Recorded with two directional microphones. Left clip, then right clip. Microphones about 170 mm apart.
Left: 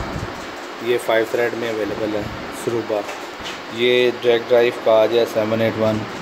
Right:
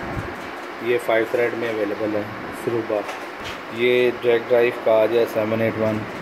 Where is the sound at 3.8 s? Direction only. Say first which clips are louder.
Left 2 dB; 5° left (ahead or behind).